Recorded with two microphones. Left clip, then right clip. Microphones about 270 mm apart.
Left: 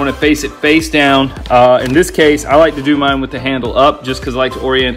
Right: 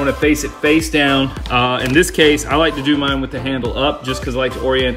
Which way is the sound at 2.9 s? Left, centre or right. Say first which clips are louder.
Left 5 dB; left.